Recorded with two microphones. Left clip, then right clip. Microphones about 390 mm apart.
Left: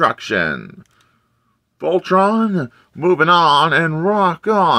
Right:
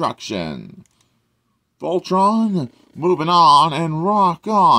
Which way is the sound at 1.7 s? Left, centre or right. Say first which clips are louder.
Left 4 dB; centre.